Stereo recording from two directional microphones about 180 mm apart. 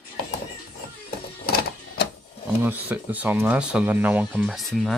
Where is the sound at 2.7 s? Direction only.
10° right (ahead or behind).